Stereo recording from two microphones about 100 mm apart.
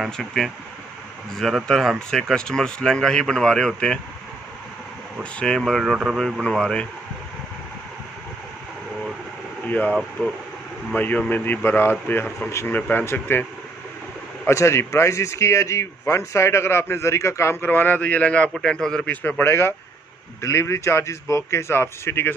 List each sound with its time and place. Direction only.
0.0 s speech: centre (ahead or behind)
5.2 s speech: 10° left (ahead or behind)
9.7 s speech: 15° left (ahead or behind)
14.5 s speech: 30° left (ahead or behind); by 19.0 s 5° left (ahead or behind)
19.0 s speech: 15° left (ahead or behind)